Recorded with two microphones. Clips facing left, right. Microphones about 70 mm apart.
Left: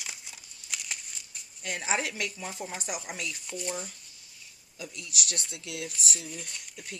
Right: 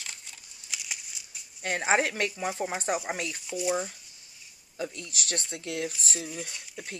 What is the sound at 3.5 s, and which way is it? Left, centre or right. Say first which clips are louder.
Speech: right 9 dB; centre.